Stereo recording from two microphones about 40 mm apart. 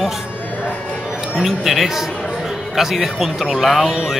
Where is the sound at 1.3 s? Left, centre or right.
Centre.